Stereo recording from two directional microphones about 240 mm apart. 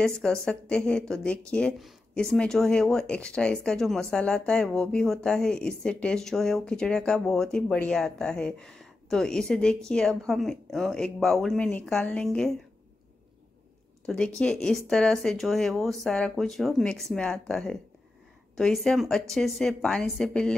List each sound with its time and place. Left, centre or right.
0.0 s a woman's voice: centre
14.0 s a woman's voice: centre